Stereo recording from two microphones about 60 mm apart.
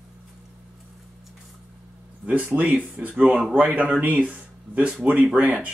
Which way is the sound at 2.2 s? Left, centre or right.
Right.